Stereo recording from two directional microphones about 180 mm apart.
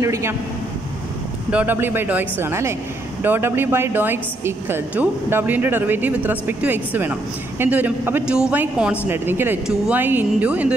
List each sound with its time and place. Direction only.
0.0 s a woman's voice: 15° right (ahead or behind)
1.5 s a woman's voice: 10° right (ahead or behind)